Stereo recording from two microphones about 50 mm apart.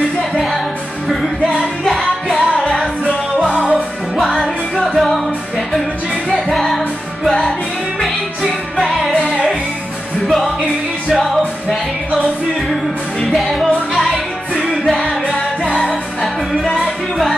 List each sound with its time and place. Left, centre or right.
0.3 s music: centre
1.9 s music: centre
6.3 s music: centre
8.7 s music: centre
9.2 s music: left
10.2 s music: centre
11.7 s music: centre
15.2 s music: left
15.8 s music: centre